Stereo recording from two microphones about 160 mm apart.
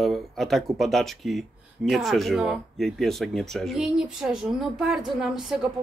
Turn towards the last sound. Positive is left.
turn(degrees=0)  # may be behind; listen again after turning